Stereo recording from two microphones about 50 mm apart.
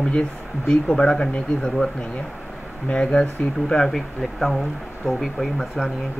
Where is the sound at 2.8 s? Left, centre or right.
Centre.